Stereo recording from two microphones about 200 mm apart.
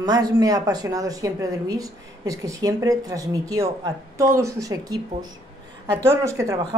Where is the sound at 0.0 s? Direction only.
20° right (ahead or behind).